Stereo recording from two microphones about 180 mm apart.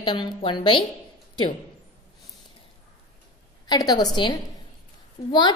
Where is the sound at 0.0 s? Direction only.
25° left (ahead or behind).